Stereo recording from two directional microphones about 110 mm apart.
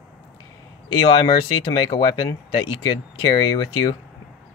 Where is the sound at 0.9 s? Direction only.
45° left (ahead or behind).